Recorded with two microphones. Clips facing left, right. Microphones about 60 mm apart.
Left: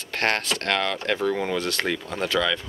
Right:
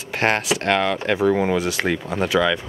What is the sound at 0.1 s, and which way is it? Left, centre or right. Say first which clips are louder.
Speech: right 4 dB; centre.